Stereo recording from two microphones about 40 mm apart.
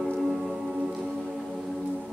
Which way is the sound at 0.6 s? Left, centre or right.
Centre.